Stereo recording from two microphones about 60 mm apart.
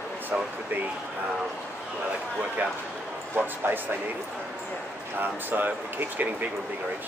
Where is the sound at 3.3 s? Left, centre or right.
Right.